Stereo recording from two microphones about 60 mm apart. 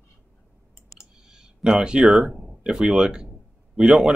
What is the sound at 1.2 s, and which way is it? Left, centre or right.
Speech, centre.